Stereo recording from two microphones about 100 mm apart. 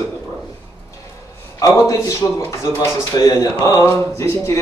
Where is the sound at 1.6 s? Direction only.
30° left (ahead or behind).